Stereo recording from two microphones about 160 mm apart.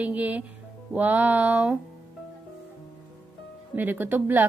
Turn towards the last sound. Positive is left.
turn(degrees=-10)  # may be behind; listen again after turning